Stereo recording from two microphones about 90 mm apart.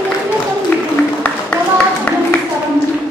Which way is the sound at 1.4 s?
20° left (ahead or behind).